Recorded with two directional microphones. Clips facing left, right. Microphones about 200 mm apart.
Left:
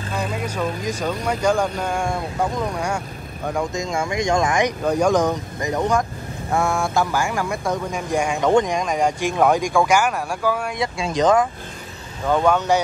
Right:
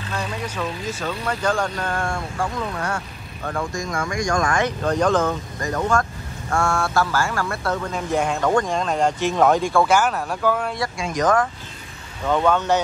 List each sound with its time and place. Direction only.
0.1 s speech: 10° left (ahead or behind)
10.8 s speech: 25° left (ahead or behind)
12.3 s speech: 10° left (ahead or behind)